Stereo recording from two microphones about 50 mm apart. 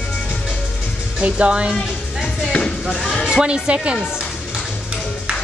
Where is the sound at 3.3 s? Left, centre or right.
Centre.